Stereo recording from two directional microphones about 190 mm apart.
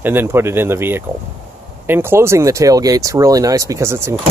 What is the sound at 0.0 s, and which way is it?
Speech, 10° right (ahead or behind).